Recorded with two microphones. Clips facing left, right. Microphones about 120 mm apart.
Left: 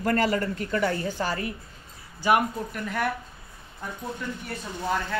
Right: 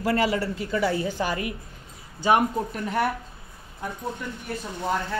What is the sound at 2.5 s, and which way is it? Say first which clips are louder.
Speech: right 4 dB; 30° right (ahead or behind).